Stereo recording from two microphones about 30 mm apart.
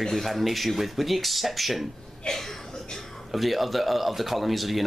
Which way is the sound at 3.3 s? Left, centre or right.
Centre.